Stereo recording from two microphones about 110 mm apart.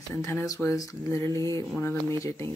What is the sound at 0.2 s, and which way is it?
Speech, 25° left (ahead or behind).